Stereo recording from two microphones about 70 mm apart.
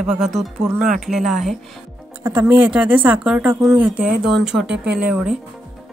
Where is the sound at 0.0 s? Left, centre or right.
Centre.